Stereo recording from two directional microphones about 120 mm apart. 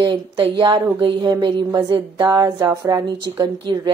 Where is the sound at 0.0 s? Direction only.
45° right (ahead or behind).